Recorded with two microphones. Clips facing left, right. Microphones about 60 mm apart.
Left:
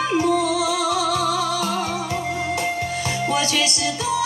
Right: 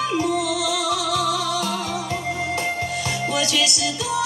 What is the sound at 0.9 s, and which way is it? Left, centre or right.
Music, left.